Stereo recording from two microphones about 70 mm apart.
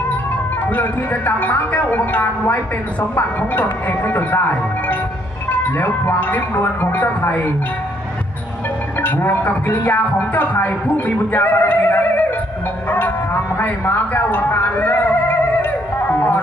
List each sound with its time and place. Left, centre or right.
0.7 s speech: left
9.0 s speech: left
12.9 s music: left